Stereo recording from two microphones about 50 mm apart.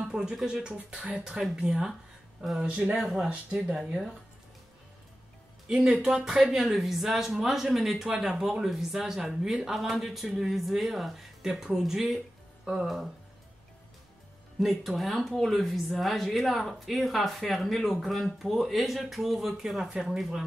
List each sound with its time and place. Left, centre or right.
0.1 s speech: centre
0.7 s speech: right
2.6 s speech: right
3.0 s speech: centre
3.3 s speech: right
5.7 s speech: centre
14.6 s speech: centre